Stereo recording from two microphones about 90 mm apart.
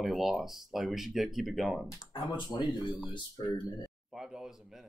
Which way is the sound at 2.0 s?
55° left (ahead or behind).